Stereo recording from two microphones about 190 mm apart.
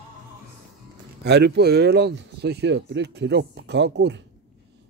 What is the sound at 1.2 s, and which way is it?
Speech, 60° right (ahead or behind).